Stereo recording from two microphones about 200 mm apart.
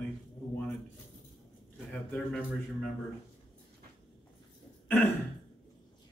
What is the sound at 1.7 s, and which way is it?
Speech, 5° left (ahead or behind).